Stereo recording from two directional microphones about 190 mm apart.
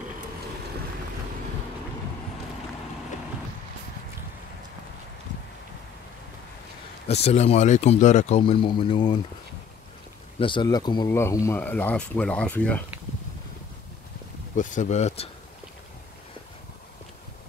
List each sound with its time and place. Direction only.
7.1 s speech: 35° left (ahead or behind)
10.4 s speech: 25° left (ahead or behind); by 12.8 s 10° left (ahead or behind)
14.5 s speech: 40° left (ahead or behind)